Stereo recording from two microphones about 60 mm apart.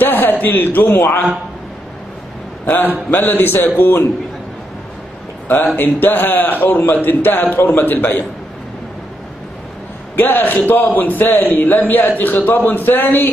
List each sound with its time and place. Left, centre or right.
0.0 s a man's voice: left
2.6 s a man's voice: left
5.8 s a man's voice: left
10.1 s a man's voice: left